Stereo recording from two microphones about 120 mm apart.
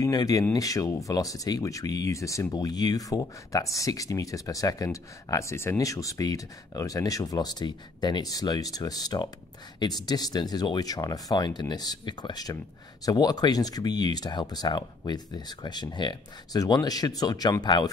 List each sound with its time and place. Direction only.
0.0 s speech: 30° left (ahead or behind)